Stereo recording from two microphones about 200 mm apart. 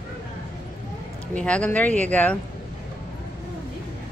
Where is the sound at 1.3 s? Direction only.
5° left (ahead or behind).